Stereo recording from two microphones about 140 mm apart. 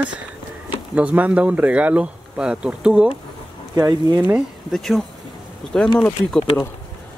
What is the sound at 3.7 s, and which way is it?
Speech, 30° right (ahead or behind).